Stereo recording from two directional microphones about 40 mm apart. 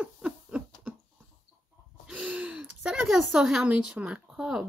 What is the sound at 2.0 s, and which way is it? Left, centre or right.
Gasp, right.